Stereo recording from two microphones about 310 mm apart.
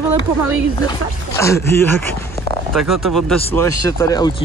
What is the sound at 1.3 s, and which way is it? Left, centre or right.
Speech, centre.